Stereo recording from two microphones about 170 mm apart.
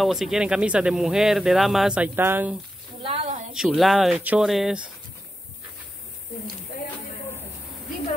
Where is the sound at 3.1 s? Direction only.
35° right (ahead or behind).